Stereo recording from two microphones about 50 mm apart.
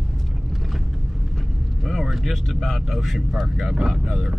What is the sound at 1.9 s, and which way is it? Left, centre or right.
Speech, centre.